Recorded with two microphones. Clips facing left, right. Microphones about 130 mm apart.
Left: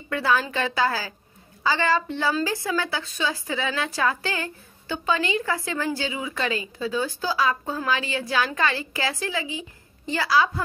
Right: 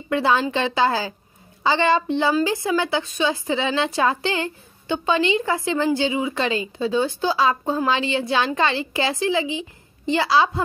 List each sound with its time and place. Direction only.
0.1 s a woman's voice: 20° right (ahead or behind)